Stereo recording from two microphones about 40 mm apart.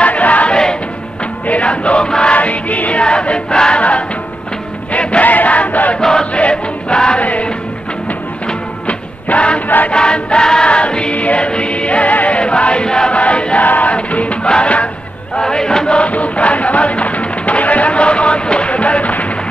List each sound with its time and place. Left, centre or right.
0.0 s choir: left
0.5 s music: left
1.5 s music: left
2.3 s music: left
4.9 s music: left
5.9 s chant: centre
6.3 s choir: left
8.8 s music: left
12.4 s chant: left
13.1 s a sound: left
13.7 s music: left
15.4 s chant: centre
16.0 s music: left